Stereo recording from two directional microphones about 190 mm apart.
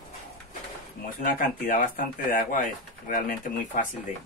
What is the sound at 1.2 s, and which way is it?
Speech, 45° left (ahead or behind).